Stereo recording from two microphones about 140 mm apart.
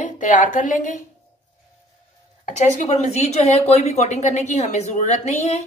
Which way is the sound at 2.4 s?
55° left (ahead or behind).